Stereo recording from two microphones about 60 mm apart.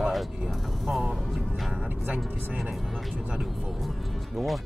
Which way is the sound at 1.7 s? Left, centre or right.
Right.